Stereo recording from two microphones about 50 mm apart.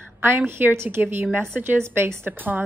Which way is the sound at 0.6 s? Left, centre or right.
Right.